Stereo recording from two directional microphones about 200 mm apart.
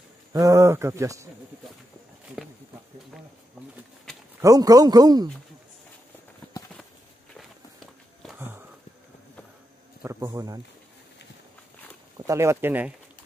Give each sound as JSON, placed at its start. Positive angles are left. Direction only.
{"t": 0.3, "sound": "speech", "side_deg": -15}
{"t": 4.4, "sound": "a man's voice", "side_deg": -15}
{"t": 7.3, "sound": "walk", "side_deg": 0}
{"t": 8.4, "sound": "sniff", "side_deg": -10}
{"t": 10.0, "sound": "speech", "side_deg": -15}
{"t": 12.3, "sound": "speech", "side_deg": -15}